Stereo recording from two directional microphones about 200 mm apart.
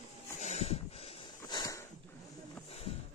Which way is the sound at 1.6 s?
15° left (ahead or behind).